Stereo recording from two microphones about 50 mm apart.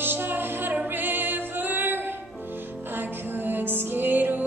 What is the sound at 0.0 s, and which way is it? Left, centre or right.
Music, right.